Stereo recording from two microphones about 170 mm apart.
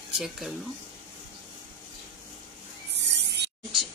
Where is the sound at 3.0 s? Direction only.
80° right.